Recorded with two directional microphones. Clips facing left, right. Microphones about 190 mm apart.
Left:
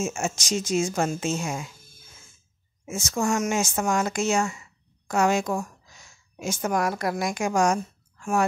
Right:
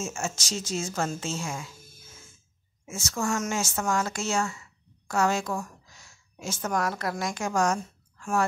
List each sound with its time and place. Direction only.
0.0 s a woman's voice: 15° left (ahead or behind)
2.9 s speech: 15° left (ahead or behind)